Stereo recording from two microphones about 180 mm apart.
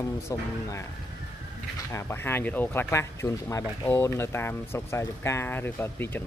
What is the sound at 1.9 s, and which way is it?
Speech, 15° left (ahead or behind).